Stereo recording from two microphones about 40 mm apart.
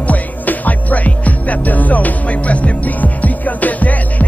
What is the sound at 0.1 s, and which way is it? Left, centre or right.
Music, left.